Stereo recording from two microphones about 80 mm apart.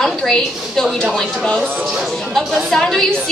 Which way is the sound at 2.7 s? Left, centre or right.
Centre.